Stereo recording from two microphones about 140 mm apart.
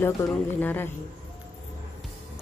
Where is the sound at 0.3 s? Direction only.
10° left (ahead or behind).